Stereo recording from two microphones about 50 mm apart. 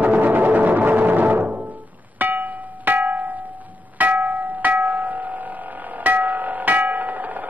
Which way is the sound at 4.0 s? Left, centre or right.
Right.